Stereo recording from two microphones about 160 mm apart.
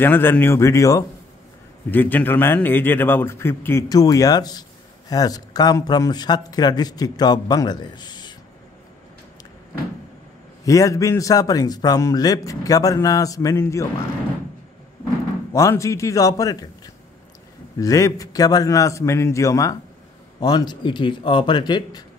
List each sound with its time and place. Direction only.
0.0 s a man's voice: 15° left (ahead or behind)
10.6 s a man's voice: 20° left (ahead or behind)
15.5 s a man's voice: 20° left (ahead or behind)